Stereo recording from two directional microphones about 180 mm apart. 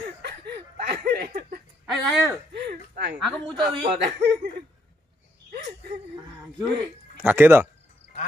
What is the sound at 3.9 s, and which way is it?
Speech, 65° right (ahead or behind).